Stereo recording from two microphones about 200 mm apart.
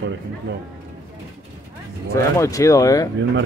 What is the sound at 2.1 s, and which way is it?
Speech, 15° left (ahead or behind).